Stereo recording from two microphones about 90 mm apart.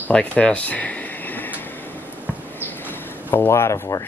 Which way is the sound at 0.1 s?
15° left (ahead or behind).